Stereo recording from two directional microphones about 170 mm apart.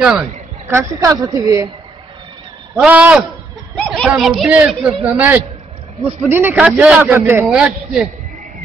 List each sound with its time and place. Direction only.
0.0 s a man's voice: 10° right (ahead or behind)
2.7 s a man's voice: 10° right (ahead or behind)
3.7 s a sound: 5° left (ahead or behind)
4.1 s a man's voice: 5° right (ahead or behind)